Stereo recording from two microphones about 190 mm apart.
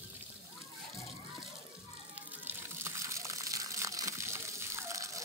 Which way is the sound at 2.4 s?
15° right (ahead or behind).